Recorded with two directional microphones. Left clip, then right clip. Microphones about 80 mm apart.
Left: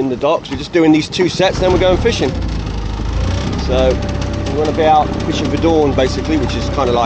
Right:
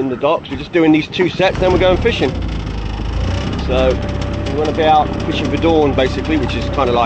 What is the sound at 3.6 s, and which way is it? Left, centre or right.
Speech, centre.